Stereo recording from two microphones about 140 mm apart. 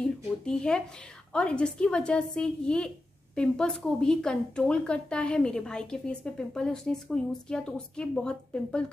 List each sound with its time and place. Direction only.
0.0 s a woman's voice: 5° left (ahead or behind)